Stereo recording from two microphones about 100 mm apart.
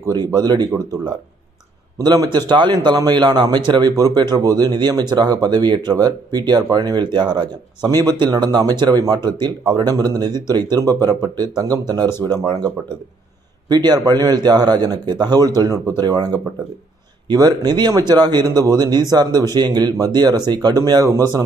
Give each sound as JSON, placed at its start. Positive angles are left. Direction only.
{"t": 0.0, "sound": "speech", "side_deg": -40}
{"t": 2.0, "sound": "speech", "side_deg": -45}
{"t": 13.7, "sound": "speech", "side_deg": -40}